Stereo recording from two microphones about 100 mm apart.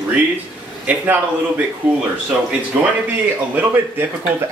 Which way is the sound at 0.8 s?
15° right (ahead or behind).